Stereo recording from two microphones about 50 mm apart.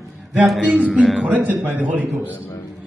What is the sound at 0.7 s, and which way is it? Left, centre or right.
A man's voice, right.